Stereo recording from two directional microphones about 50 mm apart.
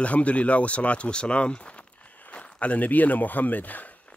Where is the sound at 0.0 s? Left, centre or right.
Left.